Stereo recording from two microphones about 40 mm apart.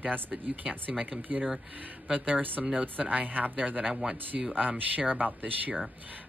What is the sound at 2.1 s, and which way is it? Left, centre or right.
Speech, right.